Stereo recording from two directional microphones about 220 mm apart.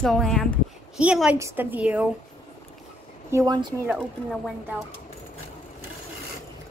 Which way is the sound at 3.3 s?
15° right (ahead or behind).